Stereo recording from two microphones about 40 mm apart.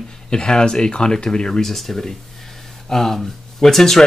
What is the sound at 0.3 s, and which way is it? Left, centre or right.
Speech, centre.